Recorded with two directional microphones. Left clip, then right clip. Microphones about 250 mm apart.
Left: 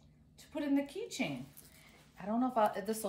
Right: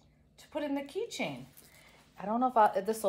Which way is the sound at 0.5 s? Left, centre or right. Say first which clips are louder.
Right 1 dB; right.